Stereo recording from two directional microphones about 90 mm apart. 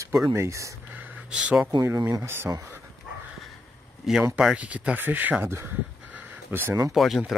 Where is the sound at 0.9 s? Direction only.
10° right (ahead or behind).